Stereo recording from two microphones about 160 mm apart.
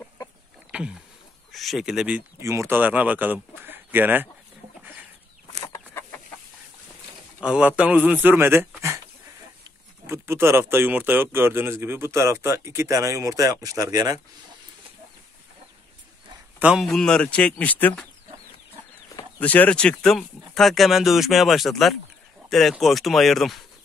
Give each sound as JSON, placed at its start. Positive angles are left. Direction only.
{"t": 0.7, "sound": "a sound", "side_deg": -5}
{"t": 1.5, "sound": "speech", "side_deg": 0}
{"t": 2.4, "sound": "speech", "side_deg": -15}
{"t": 5.7, "sound": "chicken", "side_deg": 15}
{"t": 7.4, "sound": "speech", "side_deg": -5}
{"t": 10.0, "sound": "speech", "side_deg": -15}
{"t": 16.5, "sound": "a man's voice", "side_deg": -5}
{"t": 19.4, "sound": "speech", "side_deg": 10}